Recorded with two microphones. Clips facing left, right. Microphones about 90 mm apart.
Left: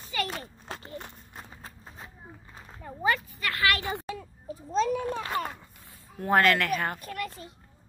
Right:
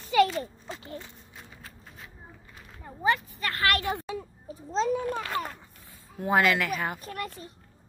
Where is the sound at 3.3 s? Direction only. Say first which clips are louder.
Even; 35° right (ahead or behind).